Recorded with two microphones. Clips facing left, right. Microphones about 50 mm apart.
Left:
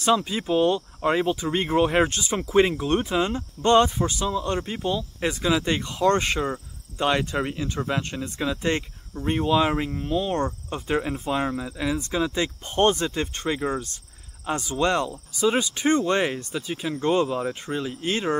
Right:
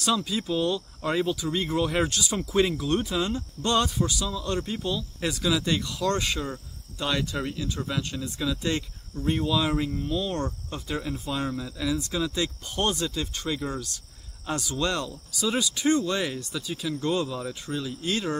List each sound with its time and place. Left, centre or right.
0.0 s speech: left